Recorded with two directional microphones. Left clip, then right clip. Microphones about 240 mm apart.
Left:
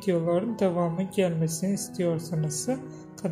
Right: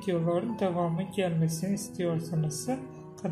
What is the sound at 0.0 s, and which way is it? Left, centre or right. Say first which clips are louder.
Speech: left 4 dB; left.